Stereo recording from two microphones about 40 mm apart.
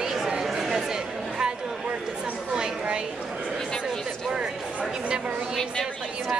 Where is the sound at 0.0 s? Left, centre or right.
Centre.